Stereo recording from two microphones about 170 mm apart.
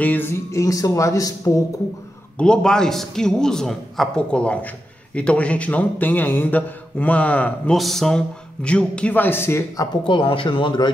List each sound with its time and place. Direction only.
0.0 s a man's voice: 10° left (ahead or behind)
2.3 s a man's voice: 5° left (ahead or behind)
10.0 s speech: 30° left (ahead or behind)